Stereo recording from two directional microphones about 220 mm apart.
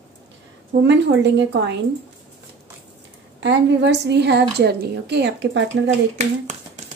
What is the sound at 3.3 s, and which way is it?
A woman's voice, 50° right (ahead or behind).